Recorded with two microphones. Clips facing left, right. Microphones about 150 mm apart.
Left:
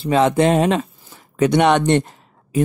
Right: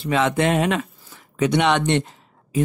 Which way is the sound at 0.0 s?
35° left (ahead or behind).